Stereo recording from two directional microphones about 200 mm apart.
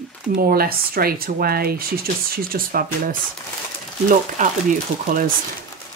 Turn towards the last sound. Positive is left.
turn(degrees=-40)  # may be behind; listen again after turning